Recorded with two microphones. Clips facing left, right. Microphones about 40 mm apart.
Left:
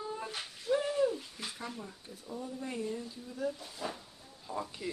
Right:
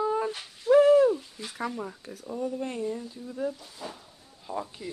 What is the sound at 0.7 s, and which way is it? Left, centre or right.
Owl, right.